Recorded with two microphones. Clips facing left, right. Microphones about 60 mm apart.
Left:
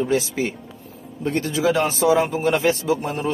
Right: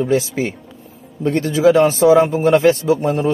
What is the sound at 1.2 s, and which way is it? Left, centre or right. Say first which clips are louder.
Speech: right 7 dB; right.